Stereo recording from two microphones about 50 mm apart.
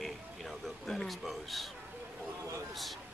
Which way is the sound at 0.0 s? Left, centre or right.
Centre.